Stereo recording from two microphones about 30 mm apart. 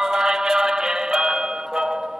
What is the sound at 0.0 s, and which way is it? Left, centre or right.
Music, centre.